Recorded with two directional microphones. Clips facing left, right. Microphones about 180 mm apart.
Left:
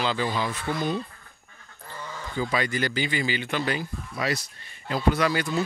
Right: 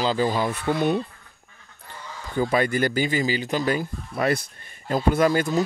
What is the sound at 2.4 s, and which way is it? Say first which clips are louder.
Speech: right 5 dB; 50° right (ahead or behind).